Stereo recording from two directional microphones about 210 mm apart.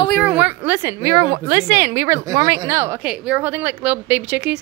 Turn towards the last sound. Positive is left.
turn(degrees=-5)  # may be behind; listen again after turning